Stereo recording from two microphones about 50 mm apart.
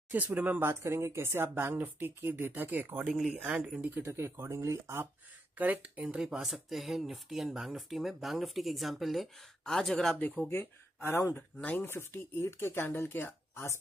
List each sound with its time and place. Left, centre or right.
0.1 s speech: right
0.7 s speech: right
1.2 s speech: right
3.1 s speech: centre
3.3 s speech: right
3.9 s speech: right
5.6 s speech: right
6.1 s speech: centre
10.5 s speech: left
11.3 s speech: left
11.8 s speech: left